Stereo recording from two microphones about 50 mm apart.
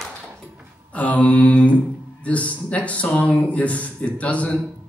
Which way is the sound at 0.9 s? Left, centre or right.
Left.